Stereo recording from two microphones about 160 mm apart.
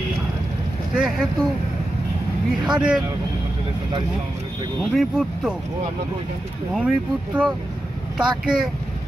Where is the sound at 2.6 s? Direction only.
5° right (ahead or behind).